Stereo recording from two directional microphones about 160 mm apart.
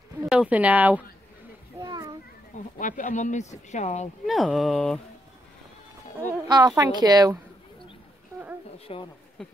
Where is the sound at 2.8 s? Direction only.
55° left (ahead or behind).